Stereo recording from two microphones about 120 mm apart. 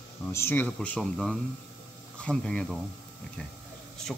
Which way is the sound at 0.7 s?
5° left (ahead or behind).